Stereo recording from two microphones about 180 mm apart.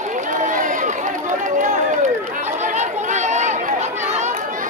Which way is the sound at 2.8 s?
40° right (ahead or behind).